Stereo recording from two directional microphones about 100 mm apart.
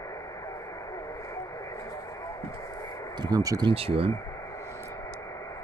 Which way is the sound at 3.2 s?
35° right (ahead or behind).